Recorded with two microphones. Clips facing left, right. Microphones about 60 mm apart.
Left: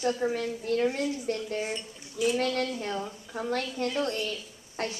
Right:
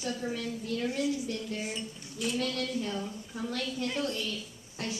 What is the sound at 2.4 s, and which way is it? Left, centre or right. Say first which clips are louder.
A woman's voice: left 3 dB; left.